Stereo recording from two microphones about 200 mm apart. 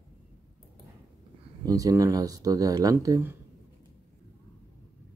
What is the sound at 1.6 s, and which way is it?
Speech, 20° right (ahead or behind).